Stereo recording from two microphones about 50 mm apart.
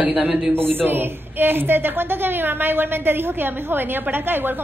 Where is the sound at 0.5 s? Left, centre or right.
Right.